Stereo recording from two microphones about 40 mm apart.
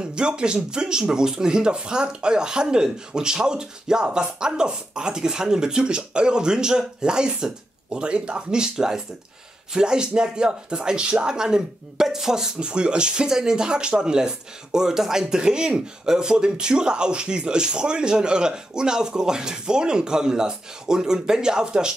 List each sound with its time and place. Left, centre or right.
0.0 s speech: right
12.5 s speech: right